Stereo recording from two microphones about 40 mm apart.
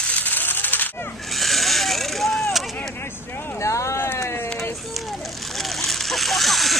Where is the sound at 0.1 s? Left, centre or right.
Left.